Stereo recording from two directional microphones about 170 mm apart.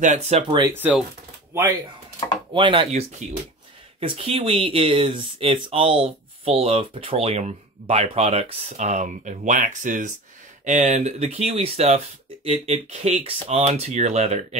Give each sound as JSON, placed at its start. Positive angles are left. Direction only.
{"t": 0.0, "sound": "speech", "side_deg": -40}
{"t": 0.7, "sound": "speech", "side_deg": -10}
{"t": 2.5, "sound": "speech", "side_deg": -30}